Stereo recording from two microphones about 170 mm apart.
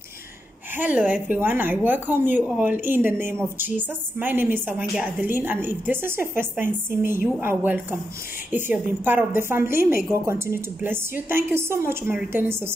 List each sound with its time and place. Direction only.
0.7 s a woman's voice: 10° right (ahead or behind)